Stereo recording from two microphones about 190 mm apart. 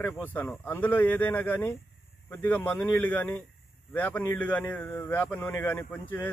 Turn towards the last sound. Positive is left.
turn(degrees=10)  # may be behind; listen again after turning